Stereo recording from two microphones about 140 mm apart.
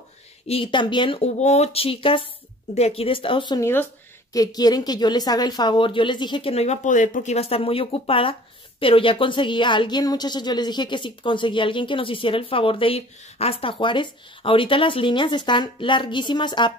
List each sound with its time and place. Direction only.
0.5 s speech: 40° left (ahead or behind)